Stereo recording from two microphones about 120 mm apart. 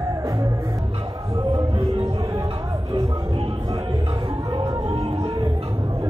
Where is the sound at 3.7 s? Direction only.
35° right (ahead or behind).